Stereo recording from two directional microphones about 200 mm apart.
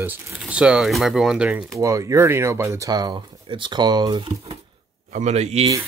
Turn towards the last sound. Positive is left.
turn(degrees=-35)  # may be behind; listen again after turning